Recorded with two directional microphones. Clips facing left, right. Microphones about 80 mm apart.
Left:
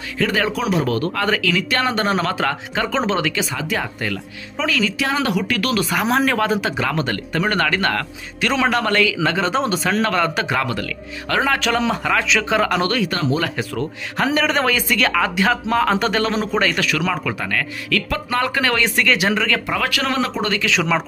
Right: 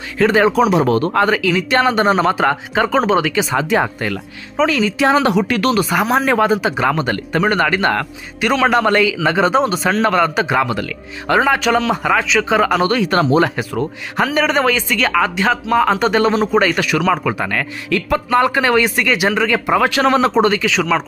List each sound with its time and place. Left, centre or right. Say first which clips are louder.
0.2 s speech: right 8 dB; right
1.2 s speech: right 4 dB; centre
3.7 s speech: right 5 dB; right
5.9 s speech: right 3 dB; centre
12.8 s speech: right 4 dB; right
13.1 s speech: right 7 dB; right
13.6 s speech: right 3 dB; centre
20.6 s speech: right 3 dB; centre